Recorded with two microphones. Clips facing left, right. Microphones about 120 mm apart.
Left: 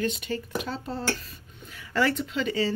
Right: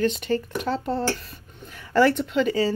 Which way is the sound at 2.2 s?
45° right (ahead or behind).